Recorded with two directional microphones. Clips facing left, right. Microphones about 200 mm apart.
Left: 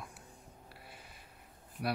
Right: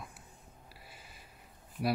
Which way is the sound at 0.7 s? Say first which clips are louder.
Left 1 dB; 5° right (ahead or behind).